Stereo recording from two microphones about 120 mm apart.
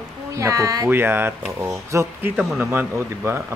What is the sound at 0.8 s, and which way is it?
Speech, 20° right (ahead or behind).